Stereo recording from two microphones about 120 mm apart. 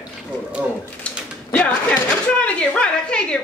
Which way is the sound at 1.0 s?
10° left (ahead or behind).